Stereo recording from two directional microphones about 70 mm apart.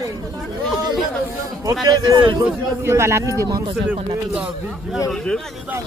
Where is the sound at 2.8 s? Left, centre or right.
Right.